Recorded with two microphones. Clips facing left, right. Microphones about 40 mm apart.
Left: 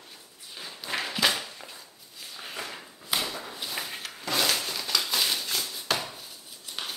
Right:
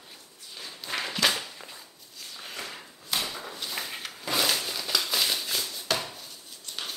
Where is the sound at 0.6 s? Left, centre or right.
Centre.